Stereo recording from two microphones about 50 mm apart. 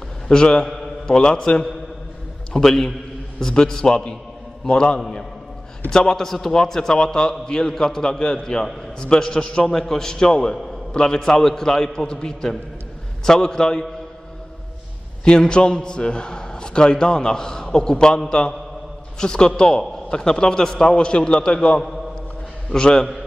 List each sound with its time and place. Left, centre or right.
0.3 s a man's voice: centre
15.2 s a man's voice: centre